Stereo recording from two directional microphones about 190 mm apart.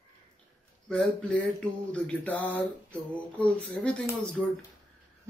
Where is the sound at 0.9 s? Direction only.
5° left (ahead or behind).